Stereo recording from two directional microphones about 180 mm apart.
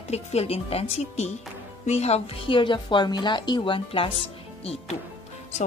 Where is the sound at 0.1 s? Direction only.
35° left (ahead or behind).